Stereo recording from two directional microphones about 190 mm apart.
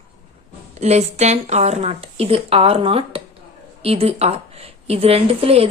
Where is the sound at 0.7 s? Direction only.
35° right (ahead or behind).